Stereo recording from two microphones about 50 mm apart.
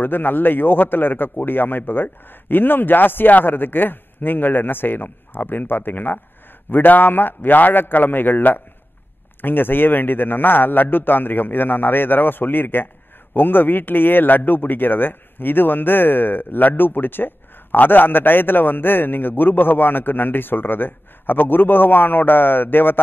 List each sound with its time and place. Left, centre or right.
0.0 s a man's voice: left